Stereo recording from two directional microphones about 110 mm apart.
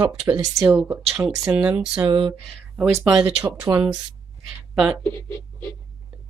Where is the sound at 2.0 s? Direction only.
40° right (ahead or behind).